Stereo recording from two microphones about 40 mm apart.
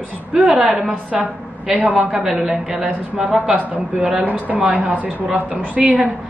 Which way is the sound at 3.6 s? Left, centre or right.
Right.